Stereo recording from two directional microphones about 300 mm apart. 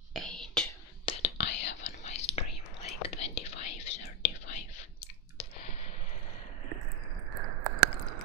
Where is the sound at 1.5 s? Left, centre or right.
Left.